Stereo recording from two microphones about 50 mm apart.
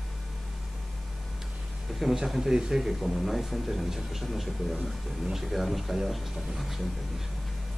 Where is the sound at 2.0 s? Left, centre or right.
Centre.